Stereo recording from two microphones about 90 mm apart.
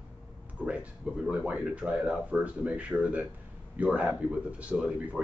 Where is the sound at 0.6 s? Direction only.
15° right (ahead or behind).